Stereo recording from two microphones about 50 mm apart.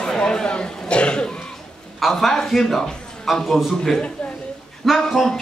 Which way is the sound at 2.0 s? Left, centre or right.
Centre.